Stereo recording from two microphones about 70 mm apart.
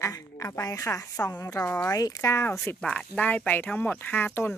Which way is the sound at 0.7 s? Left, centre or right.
Left.